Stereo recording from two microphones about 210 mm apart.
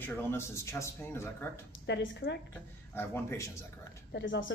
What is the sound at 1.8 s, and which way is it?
Speech, 55° left (ahead or behind).